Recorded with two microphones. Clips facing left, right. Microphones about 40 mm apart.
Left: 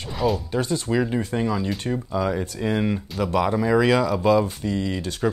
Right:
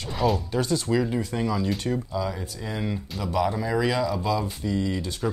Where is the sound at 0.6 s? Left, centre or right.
Left.